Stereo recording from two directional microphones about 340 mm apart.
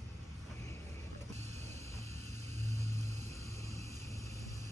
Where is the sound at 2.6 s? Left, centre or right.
Centre.